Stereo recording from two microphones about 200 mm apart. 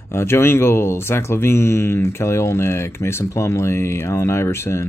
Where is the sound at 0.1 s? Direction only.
10° left (ahead or behind).